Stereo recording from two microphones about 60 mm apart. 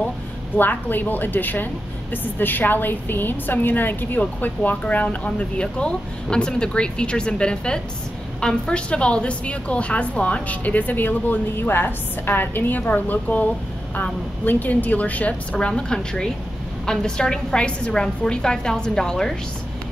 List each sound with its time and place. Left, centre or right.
0.6 s a woman's voice: left; by 19.3 s centre